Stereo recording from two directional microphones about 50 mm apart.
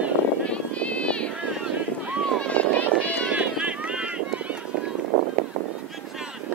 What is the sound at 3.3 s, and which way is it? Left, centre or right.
Run, right.